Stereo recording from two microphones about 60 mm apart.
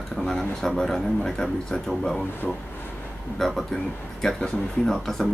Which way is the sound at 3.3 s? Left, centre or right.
Centre.